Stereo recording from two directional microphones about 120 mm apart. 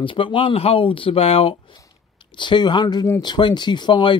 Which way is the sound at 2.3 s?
40° left (ahead or behind).